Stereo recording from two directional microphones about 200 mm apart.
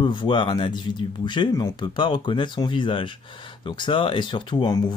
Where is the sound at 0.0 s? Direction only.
25° left (ahead or behind).